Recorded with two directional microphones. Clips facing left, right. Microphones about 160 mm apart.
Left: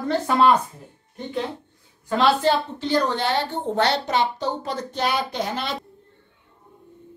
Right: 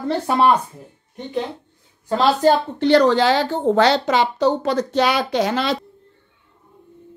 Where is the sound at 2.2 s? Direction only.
40° right (ahead or behind).